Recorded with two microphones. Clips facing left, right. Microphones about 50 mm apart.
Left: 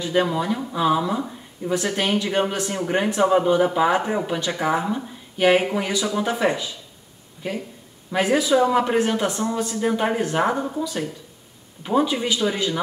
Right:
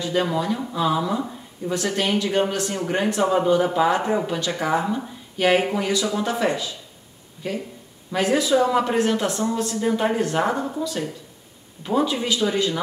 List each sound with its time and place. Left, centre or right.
0.0 s speech: centre
11.8 s speech: centre